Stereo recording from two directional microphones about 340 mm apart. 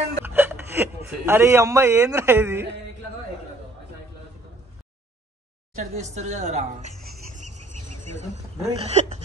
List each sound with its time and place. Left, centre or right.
0.2 s speech: centre
5.8 s a woman's voice: centre
7.5 s a sound: right
8.1 s a woman's voice: centre